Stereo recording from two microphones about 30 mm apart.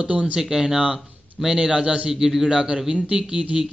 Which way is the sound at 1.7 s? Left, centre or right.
Right.